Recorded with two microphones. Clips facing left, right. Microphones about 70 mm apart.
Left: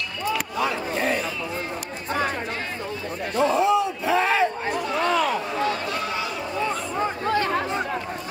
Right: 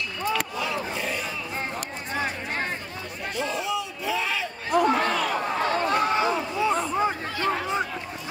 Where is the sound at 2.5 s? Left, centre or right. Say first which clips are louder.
Right 1 dB; right.